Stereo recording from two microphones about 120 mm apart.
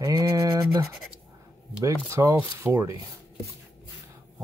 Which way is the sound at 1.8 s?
25° right (ahead or behind).